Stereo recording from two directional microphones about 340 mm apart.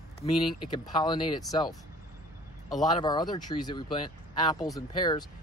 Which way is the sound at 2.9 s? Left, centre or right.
Centre.